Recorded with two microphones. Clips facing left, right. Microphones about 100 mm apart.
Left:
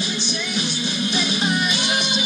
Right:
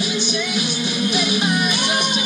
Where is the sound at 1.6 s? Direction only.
55° right (ahead or behind).